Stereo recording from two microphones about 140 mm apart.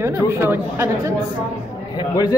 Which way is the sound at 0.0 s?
15° right (ahead or behind).